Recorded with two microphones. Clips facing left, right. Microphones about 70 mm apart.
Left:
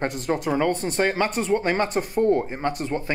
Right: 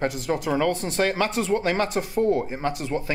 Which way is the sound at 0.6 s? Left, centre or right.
Centre.